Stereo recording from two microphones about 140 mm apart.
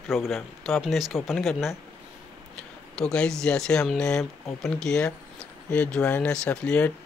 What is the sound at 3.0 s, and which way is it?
Speech, 5° left (ahead or behind).